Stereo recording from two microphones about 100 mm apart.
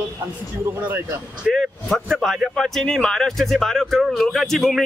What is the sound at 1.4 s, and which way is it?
A man's voice, centre (ahead or behind).